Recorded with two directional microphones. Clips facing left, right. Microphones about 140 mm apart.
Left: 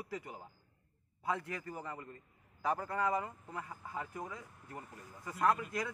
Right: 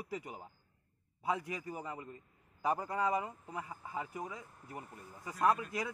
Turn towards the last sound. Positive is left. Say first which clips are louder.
# right 1 dB
turn(degrees=-15)  # may be behind; listen again after turning